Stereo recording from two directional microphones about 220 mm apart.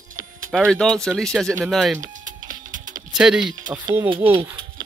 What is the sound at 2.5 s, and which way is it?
Music, 35° right (ahead or behind).